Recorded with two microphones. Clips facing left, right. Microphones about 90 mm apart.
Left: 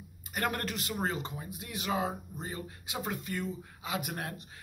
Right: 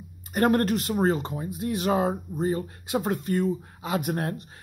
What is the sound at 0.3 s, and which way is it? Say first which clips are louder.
Speech: right 12 dB; 40° right (ahead or behind).